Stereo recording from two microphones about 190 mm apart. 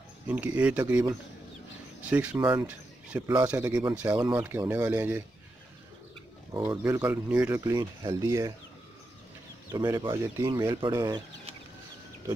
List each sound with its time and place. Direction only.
0.3 s speech: 5° right (ahead or behind)
6.5 s speech: 15° right (ahead or behind)
9.7 s speech: 15° right (ahead or behind)